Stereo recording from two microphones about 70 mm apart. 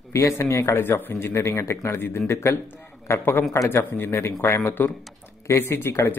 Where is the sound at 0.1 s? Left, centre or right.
Left.